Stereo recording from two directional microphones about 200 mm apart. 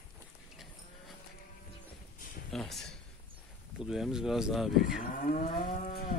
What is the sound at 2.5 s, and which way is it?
Speech, centre (ahead or behind).